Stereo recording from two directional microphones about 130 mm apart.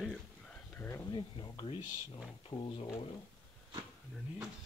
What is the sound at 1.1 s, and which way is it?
Speech, 35° left (ahead or behind).